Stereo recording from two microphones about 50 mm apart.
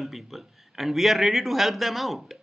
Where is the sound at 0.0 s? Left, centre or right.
Centre.